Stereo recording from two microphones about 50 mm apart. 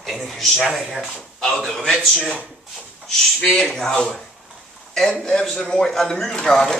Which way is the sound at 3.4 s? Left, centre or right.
Centre.